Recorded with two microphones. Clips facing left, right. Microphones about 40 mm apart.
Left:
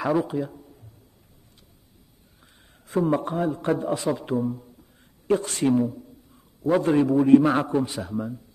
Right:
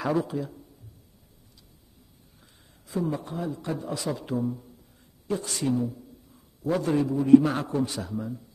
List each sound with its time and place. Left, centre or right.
0.2 s a man's voice: left
2.9 s a man's voice: left
4.1 s a man's voice: centre
5.3 s speech: left
6.6 s a man's voice: left